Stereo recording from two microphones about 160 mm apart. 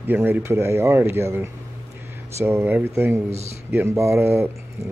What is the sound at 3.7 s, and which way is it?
Speech, 15° right (ahead or behind).